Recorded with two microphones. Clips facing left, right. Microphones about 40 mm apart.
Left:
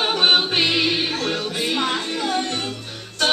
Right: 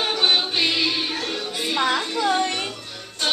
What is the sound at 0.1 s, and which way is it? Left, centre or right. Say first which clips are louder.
Music: left 3 dB; left.